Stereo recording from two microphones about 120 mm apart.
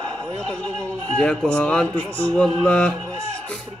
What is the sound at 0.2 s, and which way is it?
A man's voice, 5° left (ahead or behind).